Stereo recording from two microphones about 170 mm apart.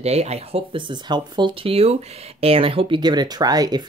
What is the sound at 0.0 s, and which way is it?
Speech, 40° right (ahead or behind).